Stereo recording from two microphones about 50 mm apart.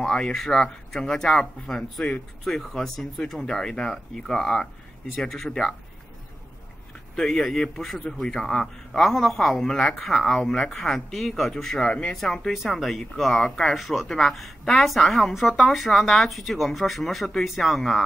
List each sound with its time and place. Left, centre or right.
0.1 s speech: centre
2.4 s speech: centre
7.2 s speech: centre
11.9 s speech: centre
12.2 s speech: centre